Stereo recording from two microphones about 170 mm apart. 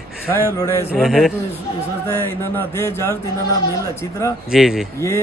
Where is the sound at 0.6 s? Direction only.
15° left (ahead or behind).